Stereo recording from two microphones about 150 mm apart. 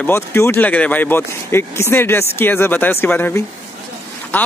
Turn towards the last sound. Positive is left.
turn(degrees=15)  # may be behind; listen again after turning